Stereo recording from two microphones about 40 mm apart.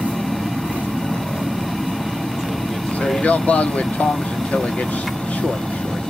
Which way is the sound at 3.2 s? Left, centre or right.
Left.